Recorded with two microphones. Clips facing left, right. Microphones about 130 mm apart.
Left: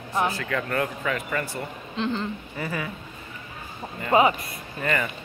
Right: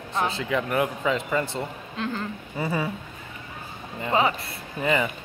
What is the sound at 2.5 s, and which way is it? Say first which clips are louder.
Speech: right 8 dB; 25° right (ahead or behind).